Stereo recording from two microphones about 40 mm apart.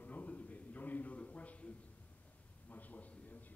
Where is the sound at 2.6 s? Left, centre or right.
Left.